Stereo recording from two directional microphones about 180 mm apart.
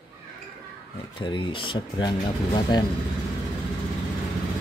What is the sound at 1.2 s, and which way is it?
Speech, 25° left (ahead or behind).